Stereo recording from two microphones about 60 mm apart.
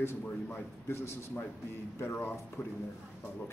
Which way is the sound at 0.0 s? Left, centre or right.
Left.